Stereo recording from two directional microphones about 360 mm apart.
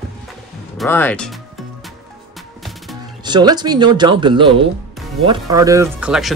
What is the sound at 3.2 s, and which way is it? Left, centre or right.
Speech, centre.